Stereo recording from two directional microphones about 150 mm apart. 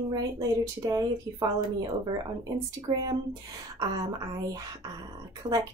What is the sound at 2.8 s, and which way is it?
Speech, 25° right (ahead or behind).